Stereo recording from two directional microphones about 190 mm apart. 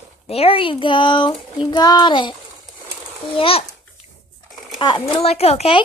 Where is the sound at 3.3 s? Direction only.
30° left (ahead or behind).